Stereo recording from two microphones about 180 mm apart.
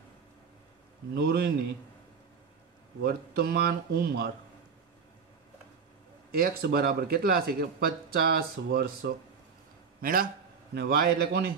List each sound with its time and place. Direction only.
1.1 s speech: 60° right (ahead or behind)
3.0 s speech: 60° right (ahead or behind)
6.3 s a man's voice: 60° right (ahead or behind)